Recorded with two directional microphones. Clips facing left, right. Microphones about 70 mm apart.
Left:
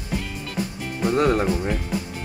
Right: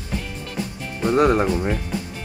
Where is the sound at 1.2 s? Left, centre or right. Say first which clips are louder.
Right 3 dB; centre.